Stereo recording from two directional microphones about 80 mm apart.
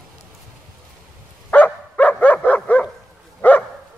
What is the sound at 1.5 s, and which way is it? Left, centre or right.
Dog, centre.